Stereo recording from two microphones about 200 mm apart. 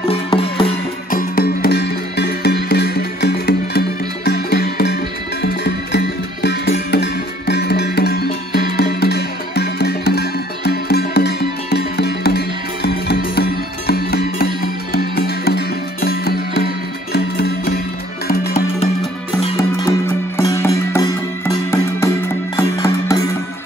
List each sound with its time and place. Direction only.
0.1 s music: 25° left (ahead or behind)
1.1 s music: 50° left (ahead or behind)
20.3 s music: 15° left (ahead or behind)